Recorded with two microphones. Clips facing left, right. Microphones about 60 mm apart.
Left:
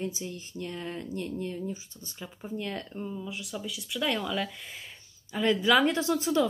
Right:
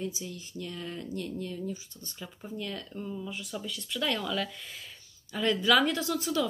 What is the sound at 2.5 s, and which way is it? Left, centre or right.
Speech, left.